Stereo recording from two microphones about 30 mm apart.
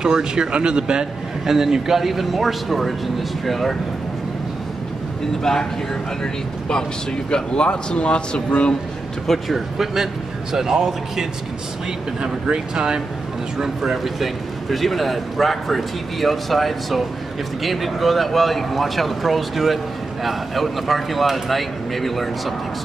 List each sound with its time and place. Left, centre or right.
0.0 s speech: right
1.4 s a man's voice: centre
5.4 s speech: centre
7.2 s speech: left
9.5 s a man's voice: centre
12.2 s speech: right
14.0 s a man's voice: centre